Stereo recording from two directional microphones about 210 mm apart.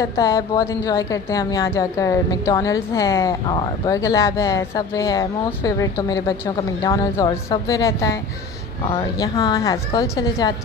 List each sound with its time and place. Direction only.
0.0 s a woman's voice: 15° left (ahead or behind)